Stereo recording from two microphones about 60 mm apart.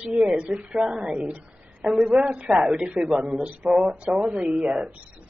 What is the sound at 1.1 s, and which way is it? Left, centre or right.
Speech, centre.